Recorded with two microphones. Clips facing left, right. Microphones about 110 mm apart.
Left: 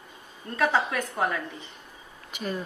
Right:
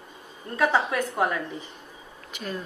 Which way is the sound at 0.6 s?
10° right (ahead or behind).